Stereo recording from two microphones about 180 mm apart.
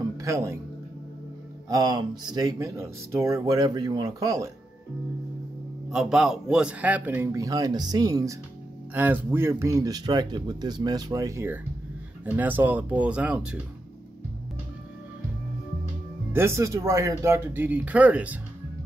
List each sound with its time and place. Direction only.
0.2 s speech: 15° right (ahead or behind)
1.7 s speech: 20° right (ahead or behind)
5.9 s a man's voice: 5° right (ahead or behind)
16.3 s a man's voice: 15° right (ahead or behind)